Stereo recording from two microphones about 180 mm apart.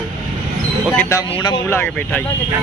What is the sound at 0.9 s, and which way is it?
Speech, 15° left (ahead or behind).